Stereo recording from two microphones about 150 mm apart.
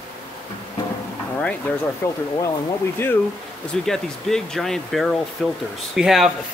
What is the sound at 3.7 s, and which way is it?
Speech, 5° left (ahead or behind).